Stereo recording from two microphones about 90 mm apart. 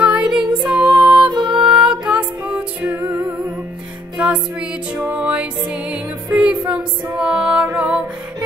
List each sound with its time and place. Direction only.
0.0 s music: 10° right (ahead or behind)
2.9 s music: 35° right (ahead or behind)
4.2 s music: 10° right (ahead or behind)